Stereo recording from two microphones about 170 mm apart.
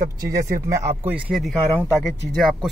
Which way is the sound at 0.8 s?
10° right (ahead or behind).